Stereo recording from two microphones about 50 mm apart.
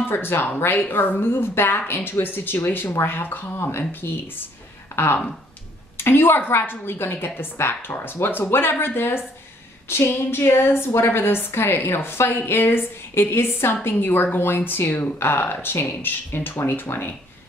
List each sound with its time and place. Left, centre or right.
0.0 s speech: left